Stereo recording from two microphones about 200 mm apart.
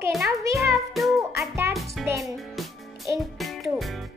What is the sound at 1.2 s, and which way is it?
Music, 15° right (ahead or behind).